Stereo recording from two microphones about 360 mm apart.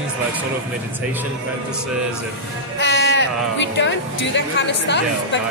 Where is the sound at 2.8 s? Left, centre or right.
Left.